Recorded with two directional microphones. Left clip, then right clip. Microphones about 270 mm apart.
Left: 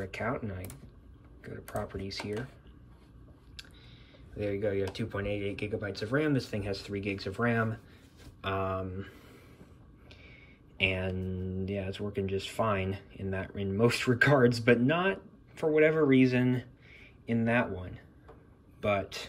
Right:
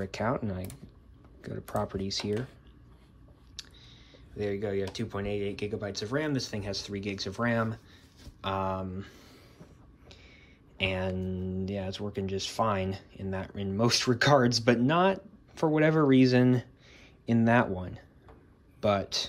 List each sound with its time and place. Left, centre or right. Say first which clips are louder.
0.0 s speech: right 3 dB; centre
4.4 s speech: even; centre
10.8 s speech: even; centre
16.2 s speech: right 3 dB; right
18.8 s speech: right 2 dB; centre